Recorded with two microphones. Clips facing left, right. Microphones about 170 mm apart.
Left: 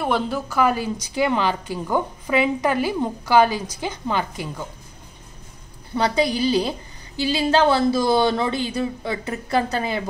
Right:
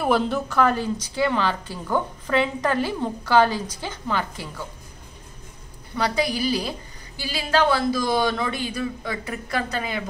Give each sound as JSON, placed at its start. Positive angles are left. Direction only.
{"t": 0.0, "sound": "a woman's voice", "side_deg": 0}
{"t": 5.9, "sound": "speech", "side_deg": 25}